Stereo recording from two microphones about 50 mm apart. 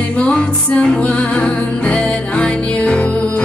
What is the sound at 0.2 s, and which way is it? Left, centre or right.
Music, centre.